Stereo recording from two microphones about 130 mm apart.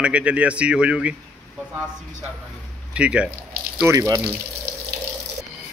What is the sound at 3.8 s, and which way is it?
Speech, 25° right (ahead or behind).